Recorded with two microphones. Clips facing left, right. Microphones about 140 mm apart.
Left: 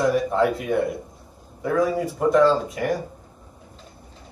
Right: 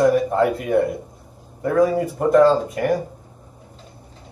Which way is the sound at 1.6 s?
50° right (ahead or behind).